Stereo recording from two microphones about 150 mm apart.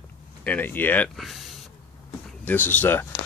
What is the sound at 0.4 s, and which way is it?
Speech, 10° left (ahead or behind).